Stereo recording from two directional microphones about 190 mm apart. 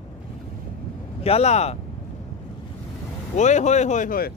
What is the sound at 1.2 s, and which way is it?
Speech, 30° left (ahead or behind).